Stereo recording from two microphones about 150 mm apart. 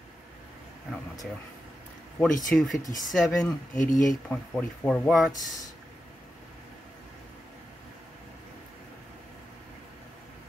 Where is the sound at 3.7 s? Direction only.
60° left (ahead or behind).